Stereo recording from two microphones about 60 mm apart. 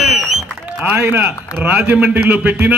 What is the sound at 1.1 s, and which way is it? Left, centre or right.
A man's voice, right.